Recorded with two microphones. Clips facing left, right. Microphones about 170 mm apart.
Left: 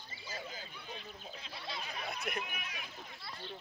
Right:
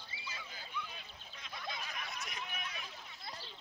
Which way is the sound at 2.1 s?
60° left (ahead or behind).